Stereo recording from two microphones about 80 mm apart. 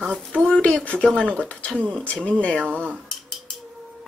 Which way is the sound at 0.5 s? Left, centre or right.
Centre.